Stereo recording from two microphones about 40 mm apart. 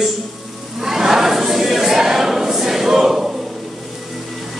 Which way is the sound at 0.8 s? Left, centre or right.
Centre.